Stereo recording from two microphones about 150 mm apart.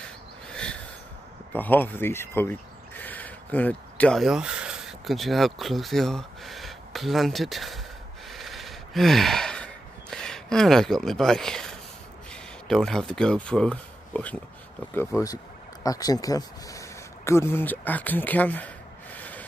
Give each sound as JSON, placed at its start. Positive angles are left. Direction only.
{"t": 0.0, "sound": "a sound", "side_deg": 5}
{"t": 1.5, "sound": "speech", "side_deg": 15}
{"t": 8.3, "sound": "gasp", "side_deg": 0}
{"t": 12.3, "sound": "speech", "side_deg": 5}
{"t": 19.1, "sound": "rub", "side_deg": 10}